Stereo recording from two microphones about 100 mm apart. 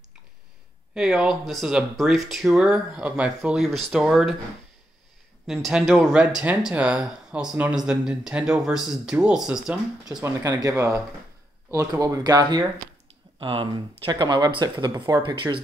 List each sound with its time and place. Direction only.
0.9 s speech: 5° right (ahead or behind)
5.5 s speech: 5° right (ahead or behind)
10.6 s speech: 30° right (ahead or behind)
13.4 s speech: 60° right (ahead or behind); by 15.3 s 45° right (ahead or behind)
15.3 s speech: 55° right (ahead or behind)